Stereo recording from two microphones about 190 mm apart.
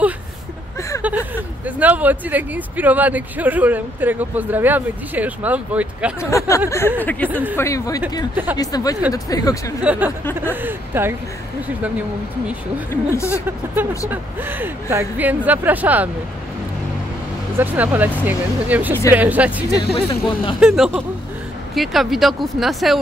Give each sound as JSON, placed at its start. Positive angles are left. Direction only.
{"t": 1.0, "sound": "speech", "side_deg": -10}
{"t": 6.3, "sound": "speech", "side_deg": 15}
{"t": 9.8, "sound": "speech", "side_deg": -10}
{"t": 12.9, "sound": "speech", "side_deg": 15}
{"t": 13.5, "sound": "speech", "side_deg": -10}
{"t": 17.6, "sound": "speech", "side_deg": -10}
{"t": 19.9, "sound": "speech", "side_deg": 25}
{"t": 20.6, "sound": "speech", "side_deg": -5}